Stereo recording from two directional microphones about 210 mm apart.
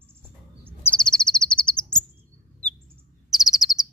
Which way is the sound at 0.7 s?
5° left (ahead or behind).